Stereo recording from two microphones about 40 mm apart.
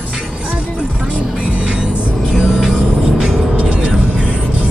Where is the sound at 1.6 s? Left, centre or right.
Right.